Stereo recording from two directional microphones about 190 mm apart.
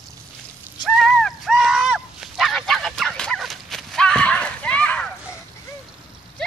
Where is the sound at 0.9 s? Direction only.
Centre (ahead or behind).